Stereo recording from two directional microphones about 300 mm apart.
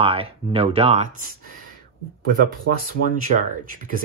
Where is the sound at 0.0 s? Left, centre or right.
Centre.